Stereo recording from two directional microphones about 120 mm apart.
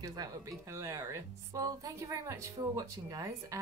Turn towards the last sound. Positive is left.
turn(degrees=-25)  # may be behind; listen again after turning